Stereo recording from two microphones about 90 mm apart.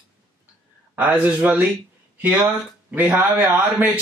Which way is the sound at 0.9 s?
15° right (ahead or behind).